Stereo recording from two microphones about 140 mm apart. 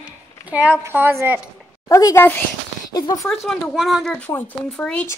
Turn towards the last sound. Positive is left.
turn(degrees=10)  # may be behind; listen again after turning